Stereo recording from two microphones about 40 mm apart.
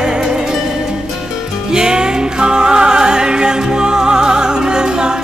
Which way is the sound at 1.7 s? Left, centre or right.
Centre.